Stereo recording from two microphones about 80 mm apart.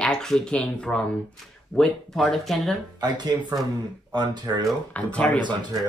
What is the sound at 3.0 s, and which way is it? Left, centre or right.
Speech, right.